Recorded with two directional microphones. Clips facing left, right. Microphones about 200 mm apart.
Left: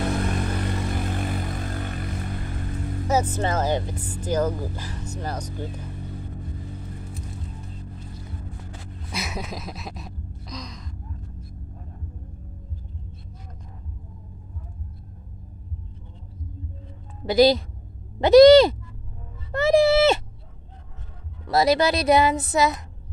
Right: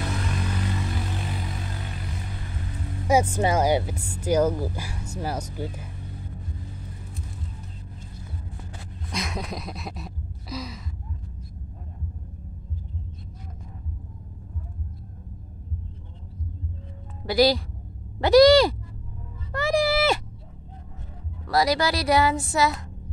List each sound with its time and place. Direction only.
0.1 s vehicle: 50° left (ahead or behind)
3.1 s speech: 10° right (ahead or behind)
9.1 s gasp: 5° left (ahead or behind)
17.3 s speech: 20° left (ahead or behind)
19.5 s a sound: 25° left (ahead or behind)
21.5 s speech: 25° left (ahead or behind)